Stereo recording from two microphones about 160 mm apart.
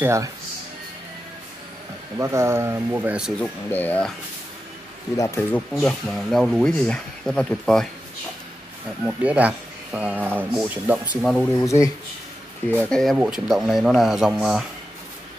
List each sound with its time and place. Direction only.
0.0 s speech: 20° right (ahead or behind)
2.1 s speech: 15° right (ahead or behind)
3.3 s speech: 10° left (ahead or behind)
5.1 s speech: 20° left (ahead or behind)
5.7 s speech: centre (ahead or behind)
9.0 s speech: 10° right (ahead or behind)
11.2 s speech: 10° left (ahead or behind)
11.6 s speech: 20° left (ahead or behind)
12.9 s speech: centre (ahead or behind)